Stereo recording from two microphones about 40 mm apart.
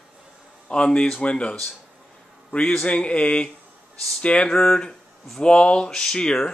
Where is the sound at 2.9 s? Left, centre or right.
Left.